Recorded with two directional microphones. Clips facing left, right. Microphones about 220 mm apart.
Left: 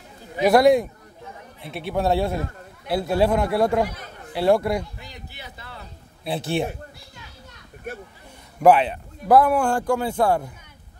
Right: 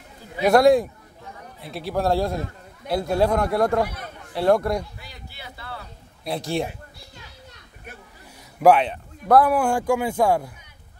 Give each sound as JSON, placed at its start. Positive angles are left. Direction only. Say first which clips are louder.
{"t": 0.5, "sound": "speech", "louder": "even", "side_deg": 0}
{"t": 5.0, "sound": "speech", "louder": "left 1 dB", "side_deg": 20}
{"t": 6.2, "sound": "speech", "louder": "left 1 dB", "side_deg": 5}
{"t": 8.5, "sound": "speech", "louder": "even", "side_deg": 0}